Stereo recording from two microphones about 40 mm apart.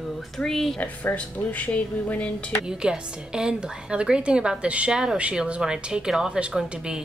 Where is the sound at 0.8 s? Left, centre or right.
Left.